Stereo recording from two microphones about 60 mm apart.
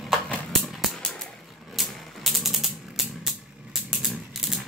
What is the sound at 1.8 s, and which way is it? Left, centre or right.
Typewriter, centre.